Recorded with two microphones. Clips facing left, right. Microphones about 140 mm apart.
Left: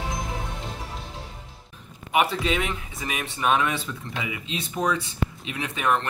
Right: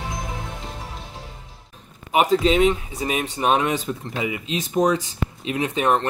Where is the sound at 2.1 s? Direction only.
35° right (ahead or behind).